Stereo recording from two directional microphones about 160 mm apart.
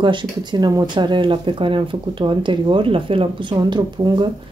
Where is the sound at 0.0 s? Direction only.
30° right (ahead or behind).